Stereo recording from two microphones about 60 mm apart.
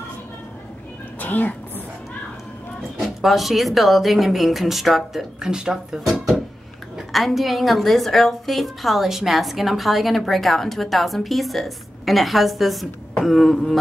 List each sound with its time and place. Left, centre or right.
1.2 s speech: left
3.0 s a woman's voice: centre